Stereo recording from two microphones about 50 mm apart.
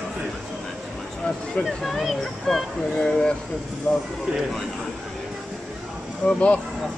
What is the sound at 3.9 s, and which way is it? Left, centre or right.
Speech, centre.